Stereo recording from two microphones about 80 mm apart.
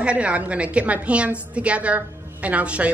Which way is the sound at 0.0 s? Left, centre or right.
Centre.